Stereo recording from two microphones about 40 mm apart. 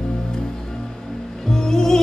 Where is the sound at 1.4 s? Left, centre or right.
Centre.